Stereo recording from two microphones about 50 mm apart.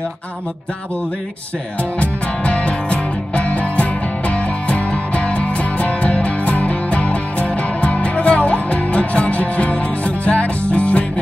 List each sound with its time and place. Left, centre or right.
2.0 s music: left